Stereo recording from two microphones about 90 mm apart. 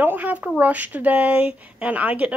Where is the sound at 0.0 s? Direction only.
20° right (ahead or behind).